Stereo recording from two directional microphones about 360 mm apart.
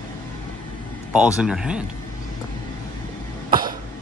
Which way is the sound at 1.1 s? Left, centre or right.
Centre.